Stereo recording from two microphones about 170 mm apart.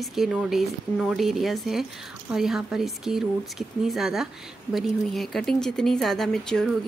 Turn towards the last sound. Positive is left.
turn(degrees=5)  # may be behind; listen again after turning